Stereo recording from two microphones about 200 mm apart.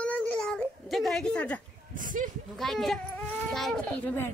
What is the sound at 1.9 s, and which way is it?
Speech, 40° right (ahead or behind).